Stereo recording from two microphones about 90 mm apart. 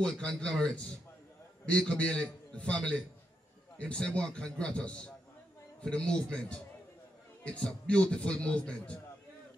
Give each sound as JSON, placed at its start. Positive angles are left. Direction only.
{"t": 0.0, "sound": "a man's voice", "side_deg": 10}